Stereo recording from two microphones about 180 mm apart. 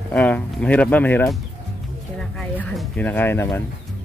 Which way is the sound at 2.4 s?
5° left (ahead or behind).